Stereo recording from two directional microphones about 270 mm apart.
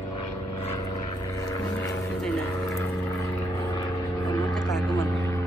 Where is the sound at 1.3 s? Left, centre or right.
Centre.